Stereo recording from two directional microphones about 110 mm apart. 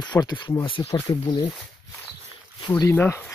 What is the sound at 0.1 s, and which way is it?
Speech, 15° left (ahead or behind).